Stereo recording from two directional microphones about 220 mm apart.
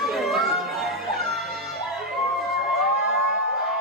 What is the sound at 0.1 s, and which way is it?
Music, centre (ahead or behind).